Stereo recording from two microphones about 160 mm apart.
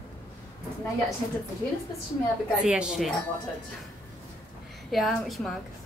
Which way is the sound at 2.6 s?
5° right (ahead or behind).